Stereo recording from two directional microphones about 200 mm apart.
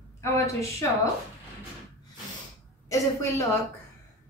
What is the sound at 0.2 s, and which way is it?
Speech, 15° left (ahead or behind).